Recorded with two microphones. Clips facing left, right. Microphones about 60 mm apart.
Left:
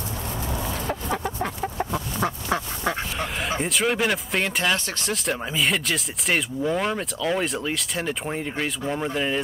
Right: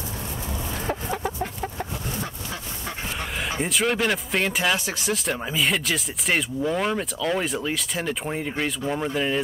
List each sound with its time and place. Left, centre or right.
2.2 s quack: left
3.2 s a man's voice: centre